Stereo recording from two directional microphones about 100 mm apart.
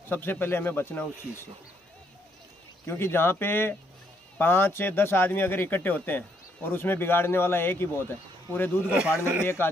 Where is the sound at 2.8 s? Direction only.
25° left (ahead or behind).